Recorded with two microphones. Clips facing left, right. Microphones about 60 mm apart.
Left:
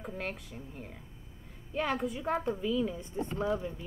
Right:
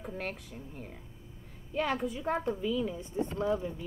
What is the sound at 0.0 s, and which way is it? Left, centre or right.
A woman's voice, centre.